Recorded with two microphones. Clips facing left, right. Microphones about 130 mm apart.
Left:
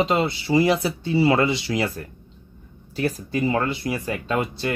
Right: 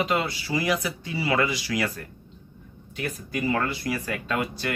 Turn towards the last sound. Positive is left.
turn(degrees=25)  # may be behind; listen again after turning